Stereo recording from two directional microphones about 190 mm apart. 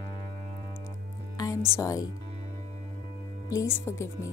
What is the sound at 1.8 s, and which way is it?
Speech, 15° left (ahead or behind).